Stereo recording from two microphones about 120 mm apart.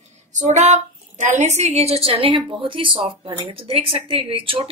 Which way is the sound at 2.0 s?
50° right (ahead or behind).